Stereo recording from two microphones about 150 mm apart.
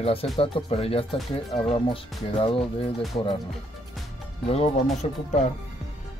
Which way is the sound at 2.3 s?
35° left (ahead or behind).